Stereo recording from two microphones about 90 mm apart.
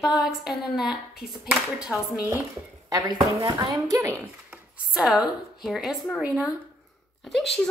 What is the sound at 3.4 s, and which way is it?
Speech, 45° right (ahead or behind).